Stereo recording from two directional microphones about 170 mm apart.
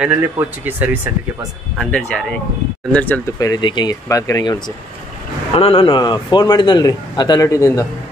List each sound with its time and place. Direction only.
0.0 s speech: 10° right (ahead or behind)
1.8 s speech: 5° left (ahead or behind)
3.3 s a man's voice: 25° left (ahead or behind)
5.5 s a man's voice: 35° left (ahead or behind)